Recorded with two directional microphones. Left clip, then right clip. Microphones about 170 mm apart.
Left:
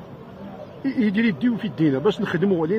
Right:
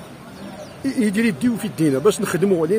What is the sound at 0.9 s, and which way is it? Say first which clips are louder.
Speech: right 2 dB; 20° right (ahead or behind).